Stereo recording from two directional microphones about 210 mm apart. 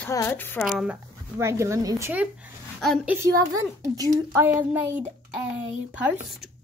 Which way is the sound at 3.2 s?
15° right (ahead or behind).